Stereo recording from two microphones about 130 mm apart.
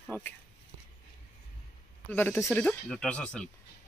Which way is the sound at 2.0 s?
15° left (ahead or behind).